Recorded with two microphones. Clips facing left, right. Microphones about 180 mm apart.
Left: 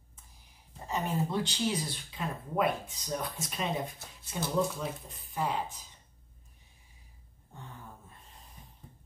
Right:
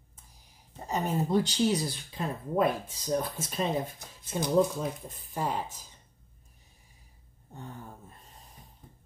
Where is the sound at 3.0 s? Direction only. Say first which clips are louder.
Right 6 dB; 25° right (ahead or behind).